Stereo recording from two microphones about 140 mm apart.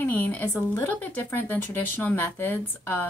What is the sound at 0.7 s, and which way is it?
A woman's voice, 10° left (ahead or behind).